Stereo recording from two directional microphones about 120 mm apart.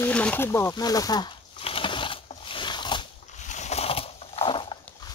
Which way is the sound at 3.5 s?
70° left (ahead or behind).